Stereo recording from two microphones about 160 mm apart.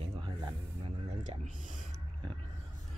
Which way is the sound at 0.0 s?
30° right (ahead or behind).